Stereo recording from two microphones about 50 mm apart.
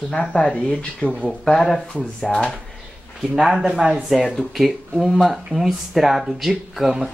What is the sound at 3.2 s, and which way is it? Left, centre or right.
Speech, centre.